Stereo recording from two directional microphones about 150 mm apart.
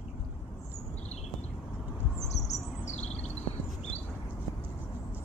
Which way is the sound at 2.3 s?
50° left (ahead or behind).